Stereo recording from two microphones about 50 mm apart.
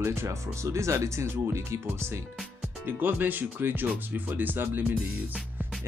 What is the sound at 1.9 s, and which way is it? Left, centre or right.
Speech, right.